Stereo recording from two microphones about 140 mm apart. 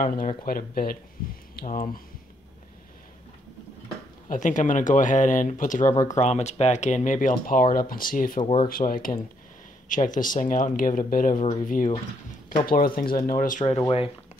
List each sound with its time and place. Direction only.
0.0 s speech: 70° left (ahead or behind); by 2.0 s 90° left
4.3 s speech: 65° left (ahead or behind)
5.9 s speech: 25° left (ahead or behind)
6.1 s speech: 55° left (ahead or behind); by 9.2 s 80° left
9.8 s speech: 70° left (ahead or behind)
12.6 s speech: 90° left; by 13.7 s 65° left (ahead or behind)